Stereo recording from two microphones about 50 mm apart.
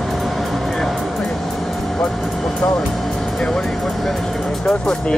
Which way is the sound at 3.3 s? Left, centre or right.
Centre.